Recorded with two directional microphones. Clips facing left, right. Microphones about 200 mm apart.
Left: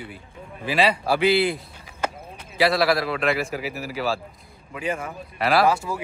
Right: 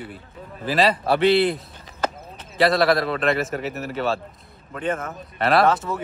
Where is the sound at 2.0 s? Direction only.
10° left (ahead or behind).